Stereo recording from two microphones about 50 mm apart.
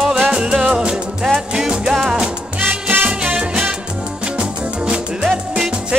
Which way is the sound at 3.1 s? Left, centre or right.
Centre.